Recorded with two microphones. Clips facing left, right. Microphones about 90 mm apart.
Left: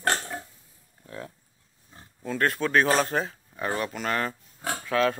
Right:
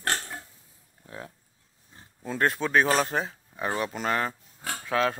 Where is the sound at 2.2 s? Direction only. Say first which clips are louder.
Even; 20° right (ahead or behind).